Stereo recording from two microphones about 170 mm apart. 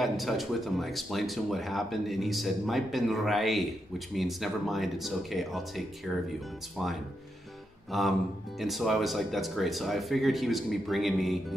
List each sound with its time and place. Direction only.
0.0 s speech: centre (ahead or behind)
7.9 s speech: centre (ahead or behind)